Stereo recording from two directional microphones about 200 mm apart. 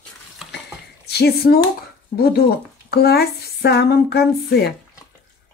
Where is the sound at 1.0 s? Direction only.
55° left (ahead or behind).